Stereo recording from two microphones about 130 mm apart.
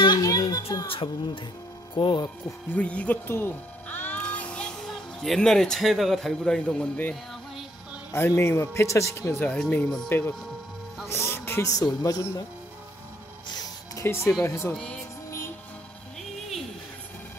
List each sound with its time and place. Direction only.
0.0 s a sound: 30° left (ahead or behind)
0.8 s speech: 40° left (ahead or behind)
2.2 s speech: 10° left (ahead or behind)
13.5 s music: 30° left (ahead or behind)
14.0 s speech: 20° left (ahead or behind)
14.7 s speech: 10° left (ahead or behind)